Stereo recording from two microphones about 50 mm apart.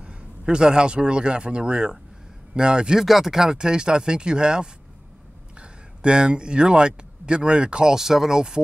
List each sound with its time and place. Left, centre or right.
0.0 s a man's voice: centre
3.0 s speech: centre